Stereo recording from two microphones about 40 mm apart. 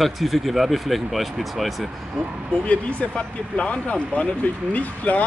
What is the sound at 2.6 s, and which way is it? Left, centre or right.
Speech, left.